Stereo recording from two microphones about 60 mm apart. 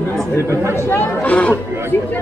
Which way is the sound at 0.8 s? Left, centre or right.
Left.